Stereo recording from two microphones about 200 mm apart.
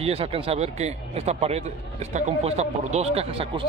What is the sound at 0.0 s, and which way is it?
Speech, 30° right (ahead or behind).